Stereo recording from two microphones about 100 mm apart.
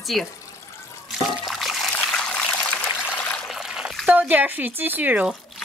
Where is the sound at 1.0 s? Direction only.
Centre (ahead or behind).